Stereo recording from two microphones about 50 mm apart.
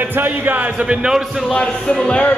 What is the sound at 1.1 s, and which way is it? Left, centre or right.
Speech, centre.